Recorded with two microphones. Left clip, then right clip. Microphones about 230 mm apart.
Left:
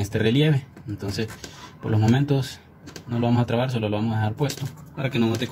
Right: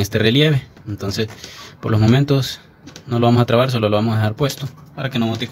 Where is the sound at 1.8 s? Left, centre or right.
Right.